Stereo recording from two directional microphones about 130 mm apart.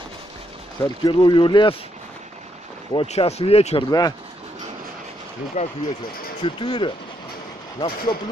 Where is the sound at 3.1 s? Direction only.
55° left (ahead or behind).